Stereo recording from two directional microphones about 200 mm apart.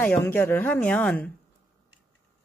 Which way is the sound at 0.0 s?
10° left (ahead or behind).